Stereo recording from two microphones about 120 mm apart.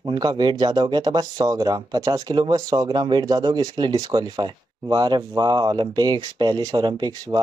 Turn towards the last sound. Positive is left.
turn(degrees=-35)  # may be behind; listen again after turning